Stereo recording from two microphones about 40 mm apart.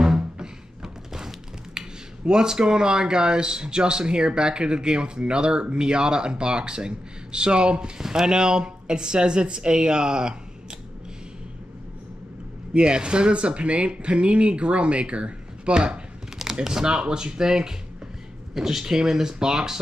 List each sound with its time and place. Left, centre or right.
0.0 s music: centre
0.8 s speech: centre
8.0 s speech: centre
12.7 s speech: right